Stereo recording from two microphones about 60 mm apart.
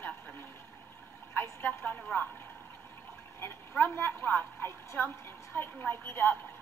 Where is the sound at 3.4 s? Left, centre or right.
Left.